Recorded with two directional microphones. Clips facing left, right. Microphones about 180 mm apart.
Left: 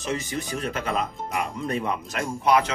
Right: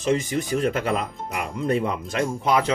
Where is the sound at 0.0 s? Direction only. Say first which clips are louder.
Right 6 dB; 35° right (ahead or behind).